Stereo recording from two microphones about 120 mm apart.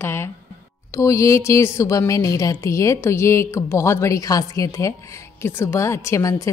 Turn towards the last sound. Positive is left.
turn(degrees=25)  # may be behind; listen again after turning